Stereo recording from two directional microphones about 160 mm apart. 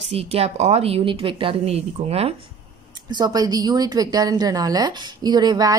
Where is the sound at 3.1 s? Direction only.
25° right (ahead or behind).